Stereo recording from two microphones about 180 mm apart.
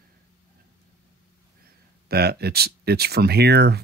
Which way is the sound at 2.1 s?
60° right (ahead or behind).